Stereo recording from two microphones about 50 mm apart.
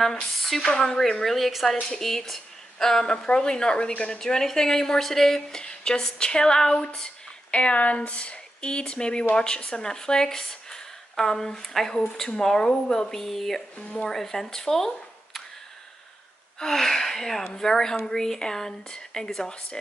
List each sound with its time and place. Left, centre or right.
0.0 s a woman's voice: centre
4.2 s a woman's voice: centre
7.5 s a woman's voice: left; by 13.6 s centre
13.7 s speech: left
14.0 s a woman's voice: centre
16.5 s a woman's voice: centre